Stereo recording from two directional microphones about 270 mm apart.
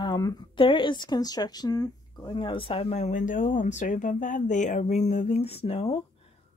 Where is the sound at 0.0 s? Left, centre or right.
Centre.